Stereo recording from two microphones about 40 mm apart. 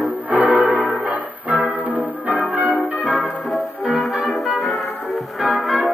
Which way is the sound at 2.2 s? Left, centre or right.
Right.